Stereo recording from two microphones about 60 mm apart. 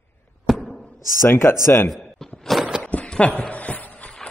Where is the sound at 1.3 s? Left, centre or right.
Left.